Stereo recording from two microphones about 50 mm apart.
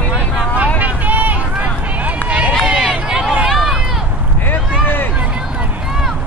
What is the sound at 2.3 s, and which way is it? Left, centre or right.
Run, right.